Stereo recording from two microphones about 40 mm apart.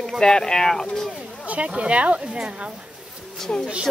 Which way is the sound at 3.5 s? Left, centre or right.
Left.